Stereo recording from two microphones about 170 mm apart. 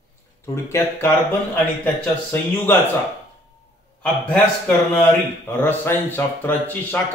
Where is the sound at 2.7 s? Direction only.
10° left (ahead or behind).